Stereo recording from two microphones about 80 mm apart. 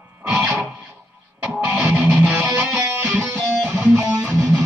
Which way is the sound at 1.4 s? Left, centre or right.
Right.